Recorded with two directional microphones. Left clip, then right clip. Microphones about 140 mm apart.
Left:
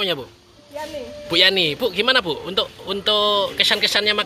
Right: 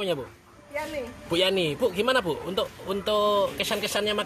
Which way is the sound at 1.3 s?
10° left (ahead or behind).